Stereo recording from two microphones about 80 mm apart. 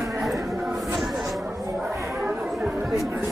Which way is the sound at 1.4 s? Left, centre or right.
Centre.